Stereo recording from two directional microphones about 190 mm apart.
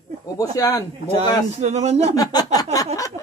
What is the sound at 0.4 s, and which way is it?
Speech, 20° left (ahead or behind).